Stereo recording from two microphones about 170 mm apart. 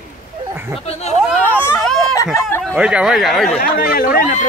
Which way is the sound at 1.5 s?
10° left (ahead or behind).